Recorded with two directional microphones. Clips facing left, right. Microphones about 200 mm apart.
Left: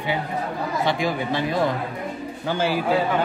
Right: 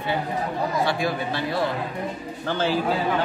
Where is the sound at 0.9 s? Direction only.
15° left (ahead or behind).